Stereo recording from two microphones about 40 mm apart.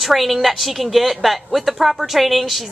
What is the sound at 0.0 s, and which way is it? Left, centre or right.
A woman's voice, centre.